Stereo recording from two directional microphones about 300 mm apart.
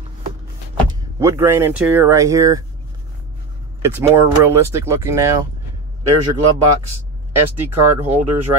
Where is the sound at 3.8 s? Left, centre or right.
Centre.